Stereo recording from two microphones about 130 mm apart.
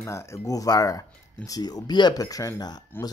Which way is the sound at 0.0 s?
20° left (ahead or behind).